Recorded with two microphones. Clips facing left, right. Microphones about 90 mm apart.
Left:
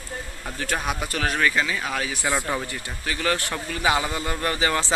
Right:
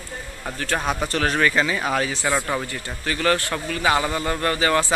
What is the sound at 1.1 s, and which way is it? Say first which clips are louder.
Speech: right 2 dB; centre (ahead or behind).